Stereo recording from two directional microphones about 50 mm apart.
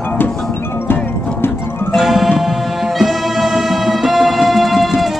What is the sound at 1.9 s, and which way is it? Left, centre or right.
Music, centre.